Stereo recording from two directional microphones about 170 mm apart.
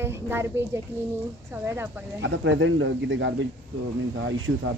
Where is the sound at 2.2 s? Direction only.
90° right.